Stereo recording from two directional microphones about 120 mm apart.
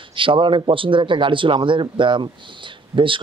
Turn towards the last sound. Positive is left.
turn(degrees=-45)  # may be behind; listen again after turning